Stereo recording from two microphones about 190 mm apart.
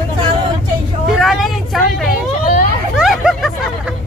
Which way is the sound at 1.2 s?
Centre (ahead or behind).